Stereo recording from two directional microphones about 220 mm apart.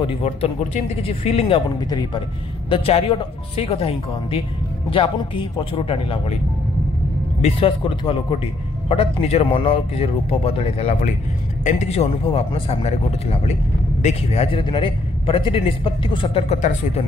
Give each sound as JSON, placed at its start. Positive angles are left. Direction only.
{"t": 0.0, "sound": "a man's voice", "side_deg": 30}
{"t": 7.4, "sound": "a man's voice", "side_deg": 25}